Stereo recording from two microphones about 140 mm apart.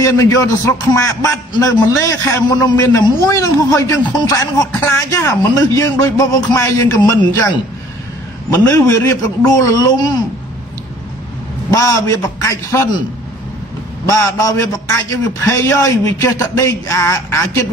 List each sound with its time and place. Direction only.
0.0 s a man's voice: 25° left (ahead or behind)
8.5 s a man's voice: 20° left (ahead or behind)
11.7 s a man's voice: 20° left (ahead or behind)
14.0 s a man's voice: 25° left (ahead or behind)